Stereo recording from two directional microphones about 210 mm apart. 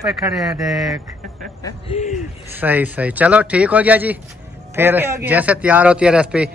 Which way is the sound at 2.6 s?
10° right (ahead or behind).